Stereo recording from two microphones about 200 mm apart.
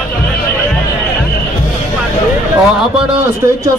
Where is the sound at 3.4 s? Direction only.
15° right (ahead or behind).